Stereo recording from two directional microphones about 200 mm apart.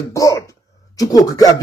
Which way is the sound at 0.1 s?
15° left (ahead or behind).